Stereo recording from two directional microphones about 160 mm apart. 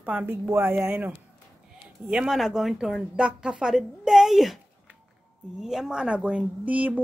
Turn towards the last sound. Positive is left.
turn(degrees=-10)  # may be behind; listen again after turning